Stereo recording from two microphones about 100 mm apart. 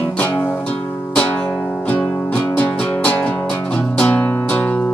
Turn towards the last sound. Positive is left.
turn(degrees=15)  # may be behind; listen again after turning